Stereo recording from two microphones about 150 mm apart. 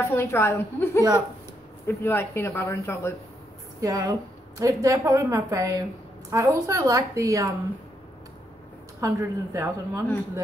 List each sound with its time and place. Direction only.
0.0 s speech: 20° left (ahead or behind)
3.8 s a woman's voice: 25° right (ahead or behind)
9.0 s a woman's voice: 20° right (ahead or behind)